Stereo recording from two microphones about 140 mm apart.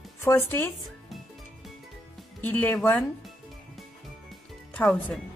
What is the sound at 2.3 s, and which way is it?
Speech, 10° left (ahead or behind).